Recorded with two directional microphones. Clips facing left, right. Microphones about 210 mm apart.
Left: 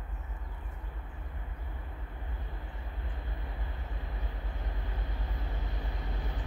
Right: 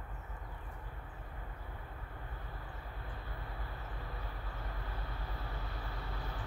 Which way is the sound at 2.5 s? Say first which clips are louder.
Left 2 dB; 20° left (ahead or behind).